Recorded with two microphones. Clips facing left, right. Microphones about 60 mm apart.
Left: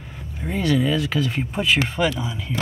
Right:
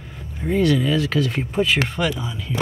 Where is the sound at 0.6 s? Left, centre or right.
Centre.